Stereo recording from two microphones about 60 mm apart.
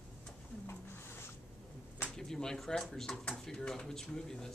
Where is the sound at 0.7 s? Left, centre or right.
Left.